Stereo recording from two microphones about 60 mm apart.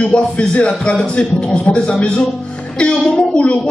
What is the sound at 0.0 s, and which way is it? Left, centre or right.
A man's voice, centre.